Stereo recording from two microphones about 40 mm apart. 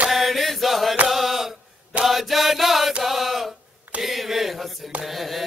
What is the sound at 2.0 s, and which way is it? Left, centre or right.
Music, centre.